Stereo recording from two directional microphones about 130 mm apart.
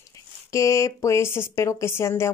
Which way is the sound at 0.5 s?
25° left (ahead or behind).